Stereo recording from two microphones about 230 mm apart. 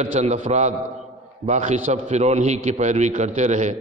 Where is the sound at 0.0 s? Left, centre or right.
Right.